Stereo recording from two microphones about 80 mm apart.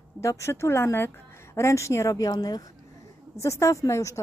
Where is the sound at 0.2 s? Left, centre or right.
Left.